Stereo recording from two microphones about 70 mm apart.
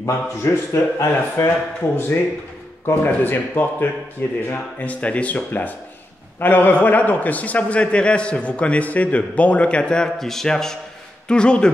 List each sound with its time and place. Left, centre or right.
0.0 s a man's voice: left; by 11.7 s centre